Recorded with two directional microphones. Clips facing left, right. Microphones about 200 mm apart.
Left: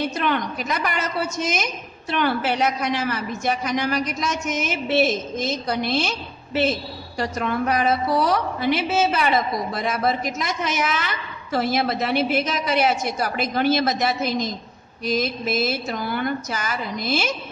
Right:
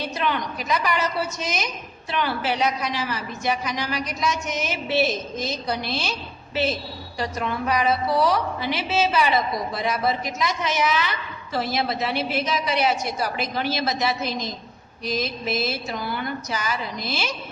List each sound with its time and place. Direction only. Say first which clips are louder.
0.2 s a woman's voice: left 2 dB; 50° left (ahead or behind)